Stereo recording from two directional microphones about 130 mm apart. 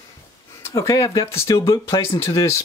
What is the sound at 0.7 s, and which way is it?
Speech, 25° left (ahead or behind).